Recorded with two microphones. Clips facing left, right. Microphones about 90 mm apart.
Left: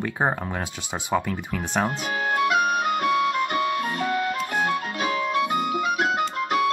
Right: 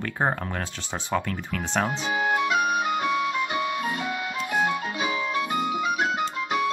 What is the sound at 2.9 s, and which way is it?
Music, 55° left (ahead or behind).